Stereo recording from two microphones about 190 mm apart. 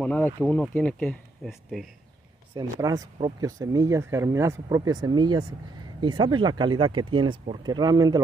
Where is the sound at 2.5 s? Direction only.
20° right (ahead or behind).